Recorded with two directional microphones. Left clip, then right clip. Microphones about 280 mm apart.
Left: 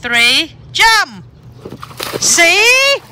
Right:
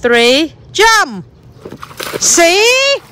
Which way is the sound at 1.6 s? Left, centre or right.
Centre.